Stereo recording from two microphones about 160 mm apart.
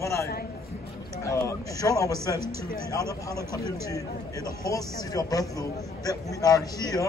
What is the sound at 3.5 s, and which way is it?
Speech, 20° left (ahead or behind).